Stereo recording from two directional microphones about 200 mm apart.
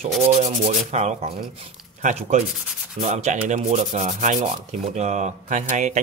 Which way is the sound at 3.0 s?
35° right (ahead or behind).